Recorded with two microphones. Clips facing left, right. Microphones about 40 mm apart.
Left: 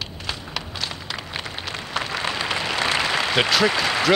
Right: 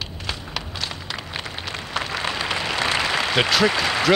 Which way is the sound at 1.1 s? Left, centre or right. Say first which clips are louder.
Even; centre.